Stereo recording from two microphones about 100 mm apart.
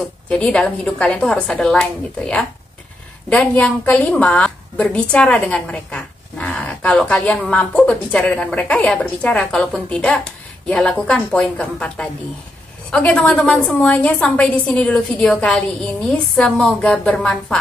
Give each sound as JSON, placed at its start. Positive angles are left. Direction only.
{"t": 0.3, "sound": "a woman's voice", "side_deg": 10}